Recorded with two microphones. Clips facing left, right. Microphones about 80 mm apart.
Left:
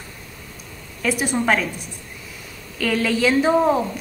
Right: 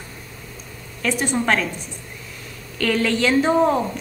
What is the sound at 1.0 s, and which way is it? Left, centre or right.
Speech, centre.